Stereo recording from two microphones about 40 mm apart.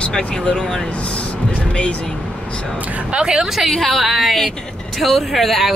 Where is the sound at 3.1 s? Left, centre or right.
Right.